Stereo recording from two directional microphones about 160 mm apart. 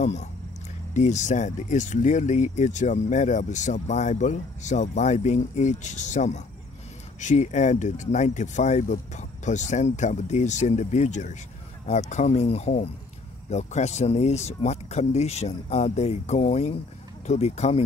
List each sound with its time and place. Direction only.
0.0 s speech: 45° left (ahead or behind)